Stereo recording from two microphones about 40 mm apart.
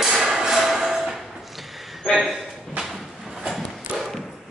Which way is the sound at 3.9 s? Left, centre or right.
Right.